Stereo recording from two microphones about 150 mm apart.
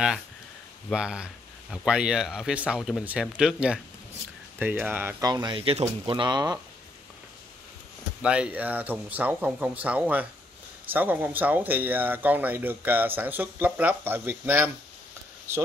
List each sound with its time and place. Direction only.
0.9 s speech: 5° right (ahead or behind)
5.2 s speech: 30° right (ahead or behind)
8.2 s speech: 5° right (ahead or behind)